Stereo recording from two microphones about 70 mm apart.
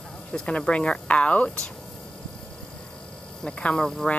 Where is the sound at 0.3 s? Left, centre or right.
Centre.